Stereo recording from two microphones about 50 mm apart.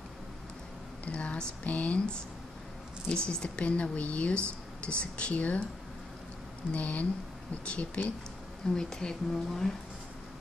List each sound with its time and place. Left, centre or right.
1.0 s speech: left
6.7 s speech: left
8.7 s speech: centre